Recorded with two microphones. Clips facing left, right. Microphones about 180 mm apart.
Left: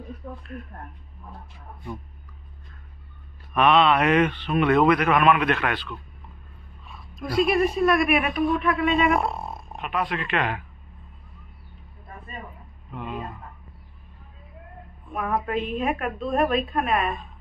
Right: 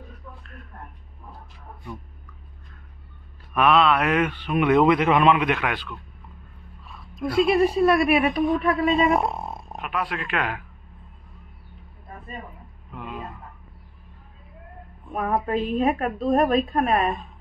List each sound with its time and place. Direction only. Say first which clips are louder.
3.5 s a man's voice: even; centre (ahead or behind)
7.2 s a woman's voice: right 2 dB; 25° right (ahead or behind)
9.2 s a sound: right 1 dB; 20° right (ahead or behind)
9.8 s speech: left 1 dB; 5° right (ahead or behind)
12.9 s speech: left 2 dB; centre (ahead or behind)
15.1 s a woman's voice: right 2 dB; 35° right (ahead or behind)